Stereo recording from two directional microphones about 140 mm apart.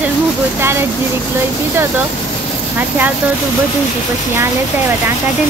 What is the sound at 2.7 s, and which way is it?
Speech, 10° right (ahead or behind).